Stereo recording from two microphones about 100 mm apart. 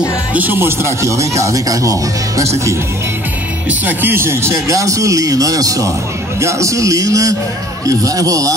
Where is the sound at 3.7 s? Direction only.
20° right (ahead or behind).